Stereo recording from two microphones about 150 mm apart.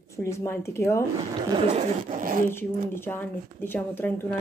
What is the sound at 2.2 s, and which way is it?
Speech, 65° right (ahead or behind).